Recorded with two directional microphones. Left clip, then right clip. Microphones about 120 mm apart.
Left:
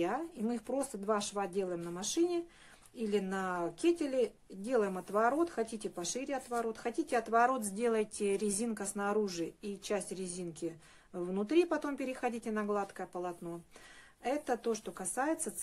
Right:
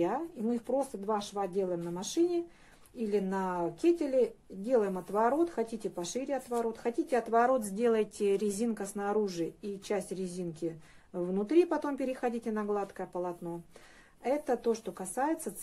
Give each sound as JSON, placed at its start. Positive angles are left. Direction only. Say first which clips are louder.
{"t": 0.0, "sound": "a woman's voice", "louder": "right 3 dB", "side_deg": 25}
{"t": 0.7, "sound": "speech", "louder": "right 2 dB", "side_deg": 45}
{"t": 1.5, "sound": "a woman's voice", "louder": "right 4 dB", "side_deg": 30}